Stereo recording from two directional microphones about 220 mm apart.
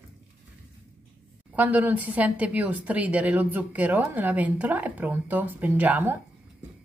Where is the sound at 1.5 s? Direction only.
5° right (ahead or behind).